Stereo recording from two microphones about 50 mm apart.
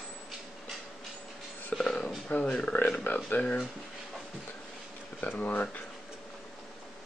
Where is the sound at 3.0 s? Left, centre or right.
Left.